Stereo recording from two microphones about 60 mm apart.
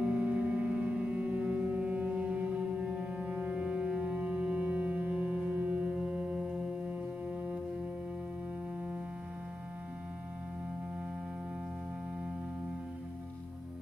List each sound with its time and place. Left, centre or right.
0.0 s music: right